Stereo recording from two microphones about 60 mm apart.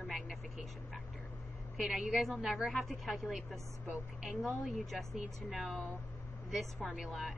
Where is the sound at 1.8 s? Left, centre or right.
Centre.